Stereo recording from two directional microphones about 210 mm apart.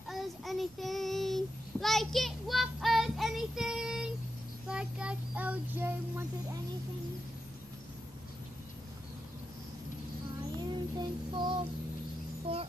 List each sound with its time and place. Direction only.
0.1 s child singing: centre (ahead or behind)
10.7 s child singing: 20° right (ahead or behind)